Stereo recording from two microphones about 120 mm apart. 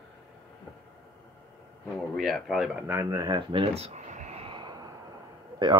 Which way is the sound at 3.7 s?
65° right (ahead or behind).